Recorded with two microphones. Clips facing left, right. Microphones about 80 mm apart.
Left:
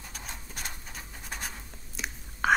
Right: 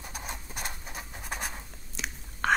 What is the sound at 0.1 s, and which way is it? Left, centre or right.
Scratch, centre.